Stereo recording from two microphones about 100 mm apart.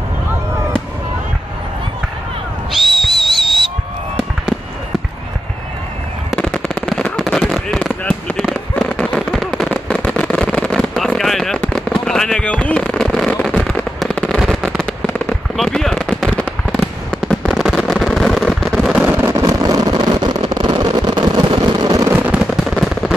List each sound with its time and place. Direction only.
2.7 s whistle: centre (ahead or behind)
6.3 s firecracker: 10° left (ahead or behind)
8.0 s fireworks: 10° left (ahead or behind)
14.3 s fireworks: centre (ahead or behind)
17.5 s a sound: 5° right (ahead or behind)
19.1 s vehicle: 25° right (ahead or behind)
19.6 s vehicle: 40° right (ahead or behind)
22.0 s fireworks: 20° right (ahead or behind)